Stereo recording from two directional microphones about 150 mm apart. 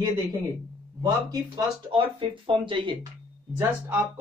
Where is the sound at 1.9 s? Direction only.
35° right (ahead or behind).